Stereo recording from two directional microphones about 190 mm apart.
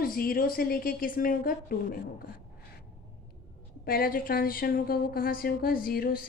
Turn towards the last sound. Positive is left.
turn(degrees=50)  # may be behind; listen again after turning